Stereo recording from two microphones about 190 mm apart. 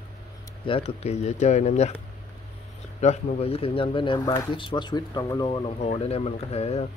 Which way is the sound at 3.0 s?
35° left (ahead or behind).